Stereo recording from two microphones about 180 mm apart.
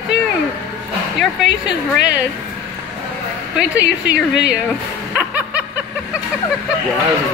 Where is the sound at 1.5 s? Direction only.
75° left (ahead or behind).